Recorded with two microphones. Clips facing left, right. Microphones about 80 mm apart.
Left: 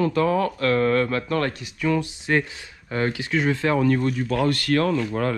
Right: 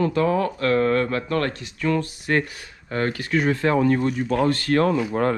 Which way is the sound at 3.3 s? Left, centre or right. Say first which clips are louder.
Right 3 dB; right.